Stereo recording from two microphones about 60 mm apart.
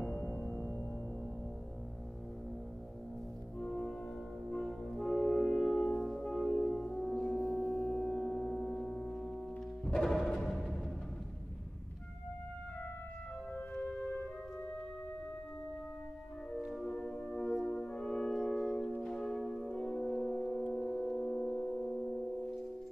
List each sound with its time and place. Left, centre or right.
0.3 s music: left
3.5 s music: centre
6.6 s singing bowl: centre
10.0 s music: centre
13.8 s music: centre
16.5 s music: centre
16.8 s brass instrument: centre
18.9 s church bell: centre
19.9 s music: centre